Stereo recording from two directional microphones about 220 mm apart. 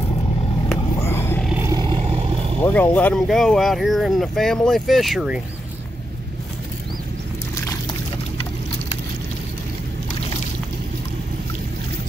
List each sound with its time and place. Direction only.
1.0 s roaring cats: 10° left (ahead or behind)
1.5 s vehicle: 15° right (ahead or behind)
2.6 s speech: 5° left (ahead or behind)